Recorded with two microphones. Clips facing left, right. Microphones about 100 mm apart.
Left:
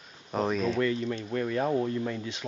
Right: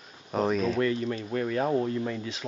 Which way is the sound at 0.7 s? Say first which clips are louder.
Right 1 dB; 35° right (ahead or behind).